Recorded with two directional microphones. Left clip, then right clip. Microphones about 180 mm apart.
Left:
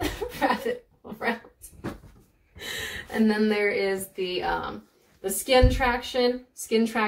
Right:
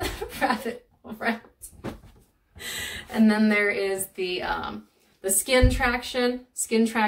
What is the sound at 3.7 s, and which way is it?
A woman's voice, 25° right (ahead or behind).